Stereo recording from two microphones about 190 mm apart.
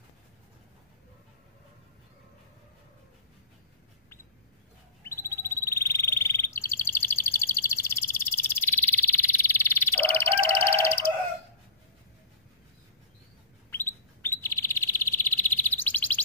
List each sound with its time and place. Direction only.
5.0 s bird: 15° left (ahead or behind)
10.6 s music: 10° left (ahead or behind)
13.7 s chirp: 10° left (ahead or behind)